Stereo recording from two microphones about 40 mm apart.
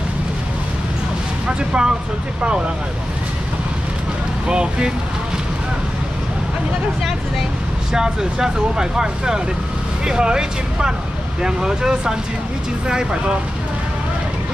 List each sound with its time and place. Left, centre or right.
1.7 s speech: centre
4.5 s speech: right
7.9 s speech: centre